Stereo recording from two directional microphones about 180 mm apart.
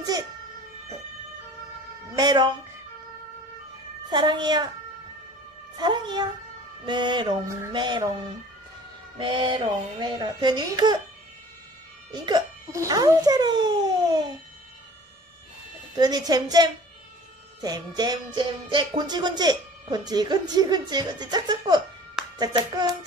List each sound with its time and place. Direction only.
2.1 s speech: 25° right (ahead or behind)
4.1 s music: 25° right (ahead or behind)
5.8 s music: 25° right (ahead or behind)
9.2 s music: 30° right (ahead or behind)
12.1 s music: 25° right (ahead or behind)
16.0 s music: 20° right (ahead or behind)